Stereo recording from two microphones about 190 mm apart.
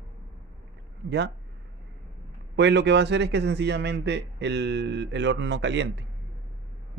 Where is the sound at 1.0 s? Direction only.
65° right (ahead or behind).